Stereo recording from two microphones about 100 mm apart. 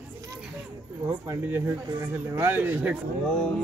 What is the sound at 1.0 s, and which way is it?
Speech, 25° right (ahead or behind).